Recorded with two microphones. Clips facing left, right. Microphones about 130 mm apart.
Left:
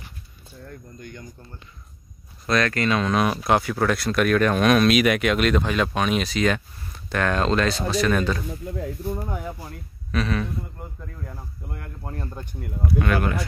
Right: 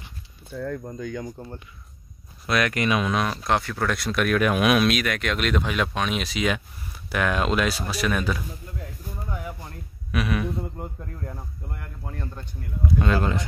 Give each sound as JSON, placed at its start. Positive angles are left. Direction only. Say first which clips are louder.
{"t": 0.5, "sound": "speech", "louder": "right 11 dB", "side_deg": -90}
{"t": 2.4, "sound": "speech", "louder": "left 1 dB", "side_deg": -10}
{"t": 3.2, "sound": "speech", "louder": "left 3 dB", "side_deg": 10}
{"t": 5.0, "sound": "speech", "louder": "left 6 dB", "side_deg": 10}
{"t": 8.9, "sound": "speech", "louder": "left 7 dB", "side_deg": 40}
{"t": 10.1, "sound": "speech", "louder": "even", "side_deg": -15}
{"t": 12.8, "sound": "speech", "louder": "even", "side_deg": -25}